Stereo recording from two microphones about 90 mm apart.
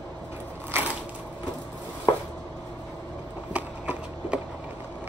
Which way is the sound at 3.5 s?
15° right (ahead or behind).